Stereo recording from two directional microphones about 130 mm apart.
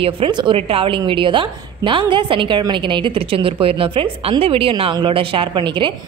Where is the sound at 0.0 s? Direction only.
45° right (ahead or behind).